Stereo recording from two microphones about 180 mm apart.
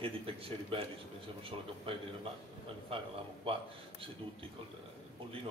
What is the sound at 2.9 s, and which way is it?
Speech, 30° right (ahead or behind).